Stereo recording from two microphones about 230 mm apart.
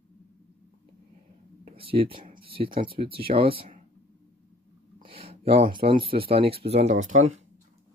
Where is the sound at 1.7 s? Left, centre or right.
Right.